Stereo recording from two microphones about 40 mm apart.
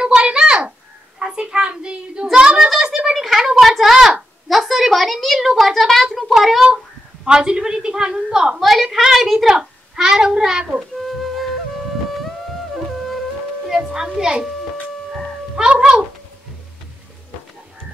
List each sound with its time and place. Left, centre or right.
0.0 s a sound: right
1.2 s a child's voice: right
3.2 s a sound: centre
4.5 s a woman's voice: centre
7.2 s a woman's voice: right
8.5 s a woman's voice: centre
9.5 s a child's voice: centre
11.0 s music: centre
13.7 s a child's voice: centre